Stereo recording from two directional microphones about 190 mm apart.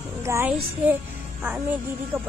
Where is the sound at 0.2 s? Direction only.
15° right (ahead or behind).